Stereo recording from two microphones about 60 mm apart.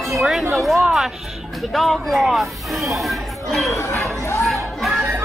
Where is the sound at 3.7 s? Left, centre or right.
Left.